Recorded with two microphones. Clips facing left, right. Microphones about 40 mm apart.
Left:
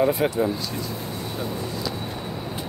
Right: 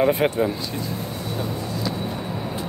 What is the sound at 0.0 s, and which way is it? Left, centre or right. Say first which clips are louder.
Speech: right 2 dB; right.